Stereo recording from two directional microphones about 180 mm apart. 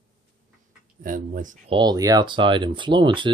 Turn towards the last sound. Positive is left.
turn(degrees=-30)  # may be behind; listen again after turning